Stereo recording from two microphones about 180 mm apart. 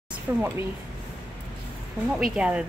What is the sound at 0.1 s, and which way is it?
Speech, 10° right (ahead or behind).